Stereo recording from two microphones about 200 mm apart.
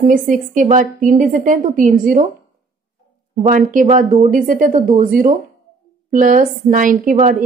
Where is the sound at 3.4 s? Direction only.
40° right (ahead or behind).